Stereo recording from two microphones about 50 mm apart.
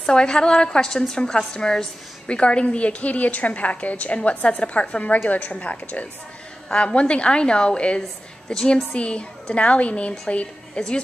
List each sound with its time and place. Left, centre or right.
0.0 s a woman's voice: centre